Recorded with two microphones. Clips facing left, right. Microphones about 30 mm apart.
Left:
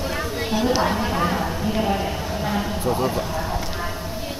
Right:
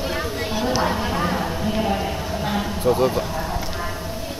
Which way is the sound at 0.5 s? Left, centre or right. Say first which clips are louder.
Left 2 dB; centre.